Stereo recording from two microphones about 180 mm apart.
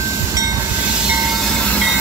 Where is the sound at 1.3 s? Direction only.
Centre (ahead or behind).